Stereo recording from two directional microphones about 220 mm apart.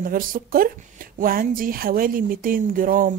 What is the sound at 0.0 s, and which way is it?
A woman's voice, 40° right (ahead or behind).